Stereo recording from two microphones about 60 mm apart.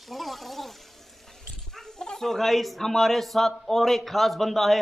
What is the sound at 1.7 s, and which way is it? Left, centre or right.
Speech, centre.